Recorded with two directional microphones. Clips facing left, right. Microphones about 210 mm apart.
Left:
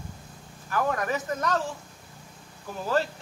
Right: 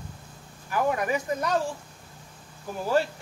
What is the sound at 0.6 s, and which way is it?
Speech, 15° right (ahead or behind).